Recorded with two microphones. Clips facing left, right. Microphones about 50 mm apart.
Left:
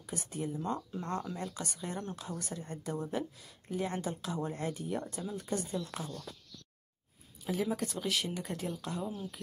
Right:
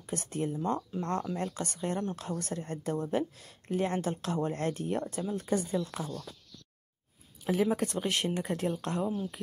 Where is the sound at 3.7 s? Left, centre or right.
Right.